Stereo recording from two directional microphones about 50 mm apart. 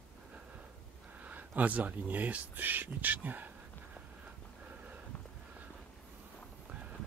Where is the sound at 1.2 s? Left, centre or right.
Right.